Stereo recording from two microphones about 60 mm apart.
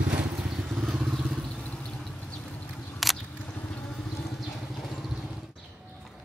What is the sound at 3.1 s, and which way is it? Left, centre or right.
Drip, centre.